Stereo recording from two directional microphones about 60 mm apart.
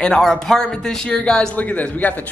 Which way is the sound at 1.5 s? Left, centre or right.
Left.